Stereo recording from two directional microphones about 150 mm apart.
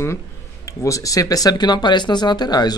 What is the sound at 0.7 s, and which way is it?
Speech, 20° left (ahead or behind).